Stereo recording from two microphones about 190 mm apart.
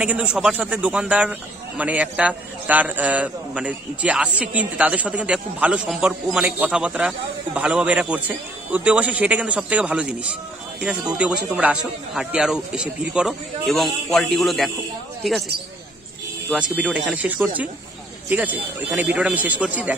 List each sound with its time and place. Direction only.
0.0 s a man's voice: 5° right (ahead or behind)
16.4 s a man's voice: 5° right (ahead or behind)